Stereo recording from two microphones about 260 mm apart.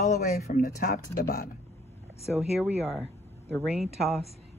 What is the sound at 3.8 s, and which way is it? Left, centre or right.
Speech, left.